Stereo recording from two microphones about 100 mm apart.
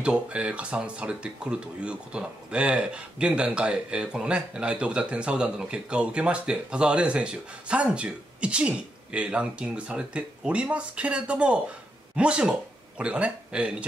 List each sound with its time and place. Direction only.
0.0 s speech: 10° right (ahead or behind)